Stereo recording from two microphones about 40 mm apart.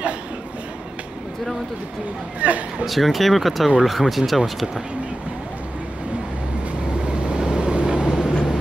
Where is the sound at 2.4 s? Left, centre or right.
Right.